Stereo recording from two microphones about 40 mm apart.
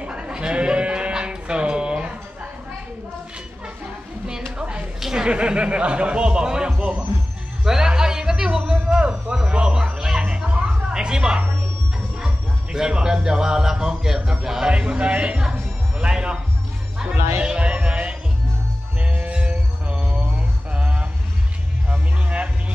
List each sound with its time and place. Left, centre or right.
0.0 s sheep: right
0.3 s bleat: right
4.6 s a sound: right
5.2 s speech: right
7.6 s music: centre
9.0 s a sound: right
10.2 s music: right
12.7 s a sound: centre
14.7 s speech: right
16.0 s music: right
17.6 s music: right